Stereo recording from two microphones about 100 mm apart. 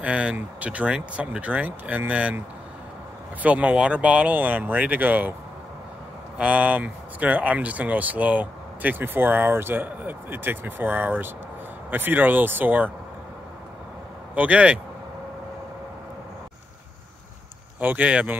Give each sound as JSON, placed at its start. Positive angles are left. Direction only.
{"t": 0.0, "sound": "speech", "side_deg": -10}
{"t": 3.4, "sound": "speech", "side_deg": -15}
{"t": 6.3, "sound": "speech", "side_deg": -15}
{"t": 14.3, "sound": "speech", "side_deg": -15}
{"t": 17.7, "sound": "speech", "side_deg": -15}